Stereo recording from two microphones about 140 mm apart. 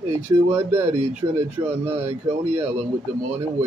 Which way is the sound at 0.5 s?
15° right (ahead or behind).